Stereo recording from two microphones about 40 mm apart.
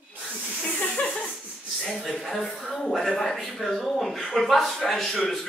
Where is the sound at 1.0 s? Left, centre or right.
Left.